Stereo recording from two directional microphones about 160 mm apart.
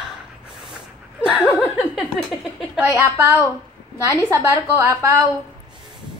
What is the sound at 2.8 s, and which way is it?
Speech, 20° right (ahead or behind).